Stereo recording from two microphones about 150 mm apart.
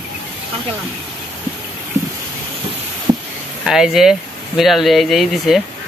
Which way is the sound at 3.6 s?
5° right (ahead or behind).